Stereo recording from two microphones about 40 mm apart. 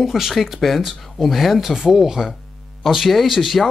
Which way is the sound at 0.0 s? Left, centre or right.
Centre.